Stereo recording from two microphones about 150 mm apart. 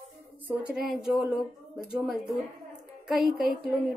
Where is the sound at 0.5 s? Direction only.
5° right (ahead or behind).